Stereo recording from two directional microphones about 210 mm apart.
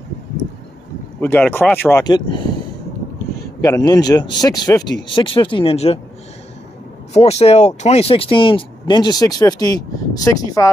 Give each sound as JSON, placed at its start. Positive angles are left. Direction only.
{"t": 1.2, "sound": "a man's voice", "side_deg": 10}
{"t": 3.6, "sound": "a man's voice", "side_deg": 15}
{"t": 7.2, "sound": "speech", "side_deg": 30}